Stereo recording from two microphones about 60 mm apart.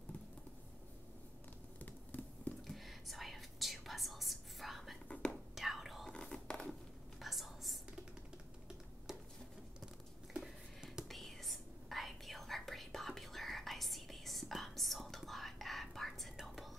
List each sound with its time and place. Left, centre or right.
1.8 s a sound: left
2.6 s whispering: centre
5.0 s whispering: left
5.5 s whispering: centre
6.0 s scratch: centre
7.2 s whispering: centre
10.4 s a sound: centre
11.1 s whispering: centre